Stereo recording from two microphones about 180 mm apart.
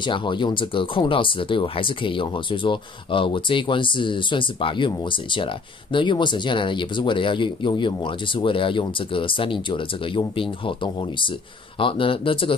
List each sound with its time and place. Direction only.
0.0 s speech: 25° left (ahead or behind)